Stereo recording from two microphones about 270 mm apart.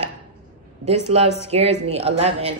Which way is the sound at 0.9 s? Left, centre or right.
Right.